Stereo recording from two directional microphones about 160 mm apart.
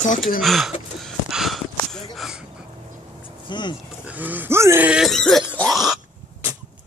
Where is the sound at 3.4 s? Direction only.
30° left (ahead or behind).